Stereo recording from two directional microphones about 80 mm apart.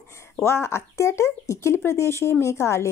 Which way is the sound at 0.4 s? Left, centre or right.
Left.